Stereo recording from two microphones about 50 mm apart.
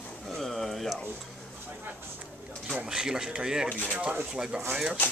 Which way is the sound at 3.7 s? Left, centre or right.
Left.